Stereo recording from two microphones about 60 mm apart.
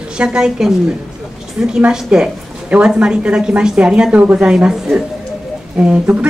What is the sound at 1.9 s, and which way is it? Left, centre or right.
Speech, centre.